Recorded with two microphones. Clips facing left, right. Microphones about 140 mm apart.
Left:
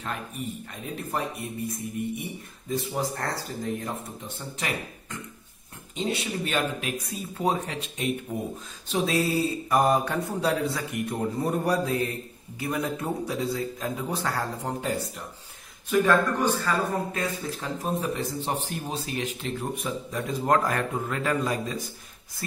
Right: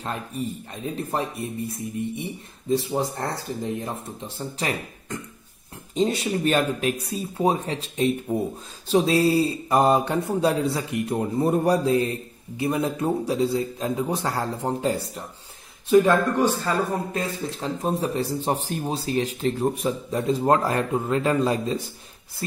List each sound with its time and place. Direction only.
0.0 s a man's voice: 30° right (ahead or behind)
2.7 s speech: 30° right (ahead or behind)
5.9 s a man's voice: 40° right (ahead or behind)
7.3 s a man's voice: 30° right (ahead or behind)